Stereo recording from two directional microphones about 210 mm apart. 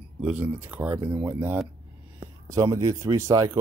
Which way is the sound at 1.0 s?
25° right (ahead or behind).